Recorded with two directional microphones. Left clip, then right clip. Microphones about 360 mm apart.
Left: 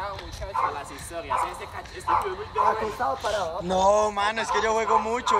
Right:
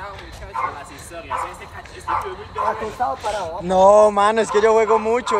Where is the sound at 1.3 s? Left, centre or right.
Centre.